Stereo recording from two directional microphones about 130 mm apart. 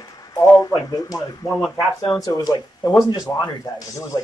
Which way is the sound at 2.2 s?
30° left (ahead or behind).